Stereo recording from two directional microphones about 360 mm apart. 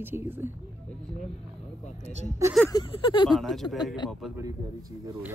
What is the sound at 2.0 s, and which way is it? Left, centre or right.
Speech, centre.